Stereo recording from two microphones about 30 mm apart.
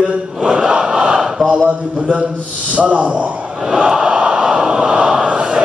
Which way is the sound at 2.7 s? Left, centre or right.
Right.